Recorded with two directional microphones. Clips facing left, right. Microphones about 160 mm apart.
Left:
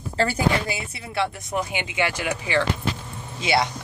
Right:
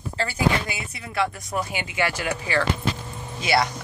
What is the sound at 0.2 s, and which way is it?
Speech, 35° left (ahead or behind).